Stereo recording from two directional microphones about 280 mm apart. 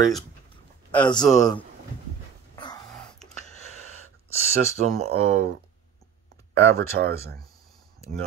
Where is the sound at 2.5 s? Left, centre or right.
Centre.